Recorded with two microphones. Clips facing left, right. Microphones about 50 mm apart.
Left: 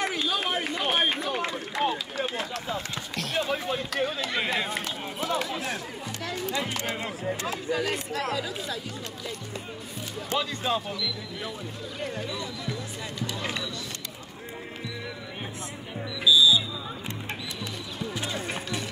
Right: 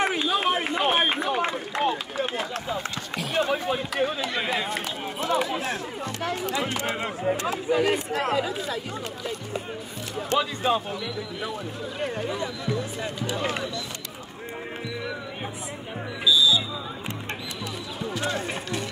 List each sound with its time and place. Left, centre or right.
0.0 s run: right
1.8 s run: centre
2.7 s speech: centre
5.3 s speech: centre
8.1 s speech: right
10.6 s speech: centre
12.3 s speech: right
16.3 s music: centre
18.5 s music: centre